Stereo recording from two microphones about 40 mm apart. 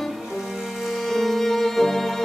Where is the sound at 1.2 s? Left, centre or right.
Centre.